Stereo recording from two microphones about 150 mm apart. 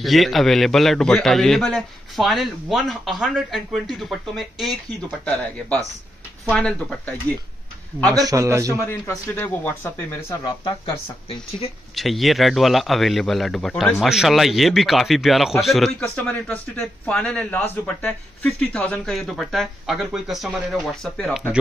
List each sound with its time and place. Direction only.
0.0 s a man's voice: centre (ahead or behind)
8.3 s a man's voice: 20° right (ahead or behind)
8.7 s speech: 20° left (ahead or behind)
11.2 s speech: 40° left (ahead or behind)
11.9 s a man's voice: centre (ahead or behind)